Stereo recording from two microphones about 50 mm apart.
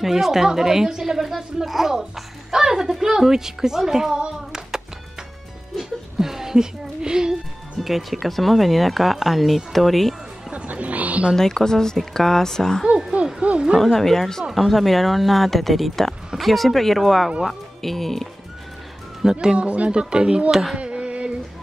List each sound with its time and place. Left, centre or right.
0.0 s a woman's voice: centre
5.8 s a sound: centre
7.8 s speech: centre
10.5 s music: right
11.3 s speech: centre
13.1 s owl: right
13.7 s speech: centre
19.4 s speech: right
20.7 s a sound: right